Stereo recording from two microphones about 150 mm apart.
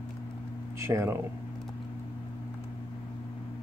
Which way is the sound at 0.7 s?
20° right (ahead or behind).